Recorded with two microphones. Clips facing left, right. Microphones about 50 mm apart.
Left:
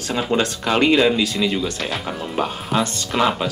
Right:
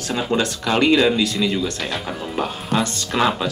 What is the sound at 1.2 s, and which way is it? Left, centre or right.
Speech, left.